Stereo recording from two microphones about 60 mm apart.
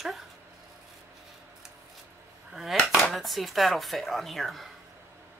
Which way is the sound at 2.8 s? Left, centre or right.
Centre.